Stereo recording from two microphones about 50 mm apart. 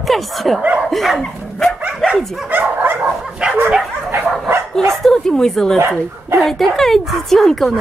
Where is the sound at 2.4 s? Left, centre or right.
Right.